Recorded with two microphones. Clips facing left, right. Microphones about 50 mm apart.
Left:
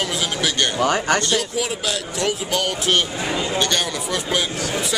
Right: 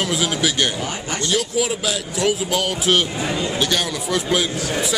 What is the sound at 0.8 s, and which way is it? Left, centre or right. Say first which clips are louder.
Speech: left 8 dB; left.